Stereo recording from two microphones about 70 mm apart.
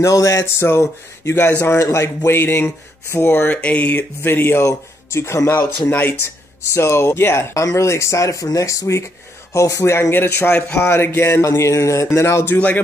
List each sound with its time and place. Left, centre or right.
0.0 s speech: left
1.7 s speech: left
3.6 s speech: left
5.9 s speech: left
10.1 s speech: left
11.4 s speech: left
12.4 s speech: left